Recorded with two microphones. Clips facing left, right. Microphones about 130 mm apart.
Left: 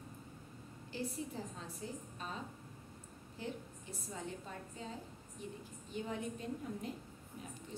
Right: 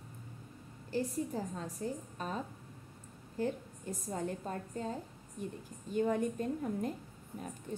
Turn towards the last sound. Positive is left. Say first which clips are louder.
# right 7 dB
turn(degrees=-50)  # may be behind; listen again after turning